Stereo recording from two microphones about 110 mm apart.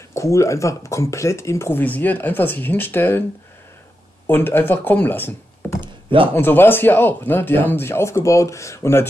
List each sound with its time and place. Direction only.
0.1 s speech: 25° left (ahead or behind)
4.3 s speech: 20° left (ahead or behind)
5.8 s a sound: 50° right (ahead or behind)
6.3 s speech: 20° left (ahead or behind)